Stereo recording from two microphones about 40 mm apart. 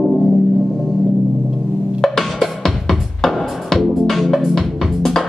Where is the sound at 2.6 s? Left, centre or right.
Centre.